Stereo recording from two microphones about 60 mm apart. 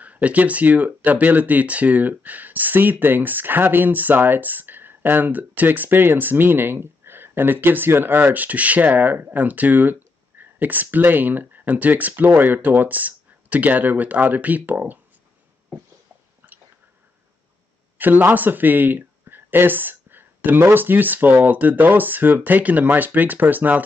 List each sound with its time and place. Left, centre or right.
0.0 s speech: right
16.4 s biting: right
17.9 s speech: right